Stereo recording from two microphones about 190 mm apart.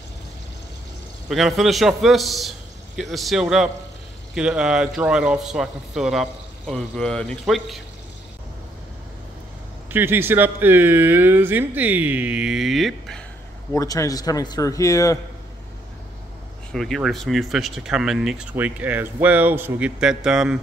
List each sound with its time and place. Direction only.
1.3 s speech: centre (ahead or behind)
9.8 s speech: 10° right (ahead or behind)
13.7 s a man's voice: 15° left (ahead or behind)
16.7 s speech: centre (ahead or behind)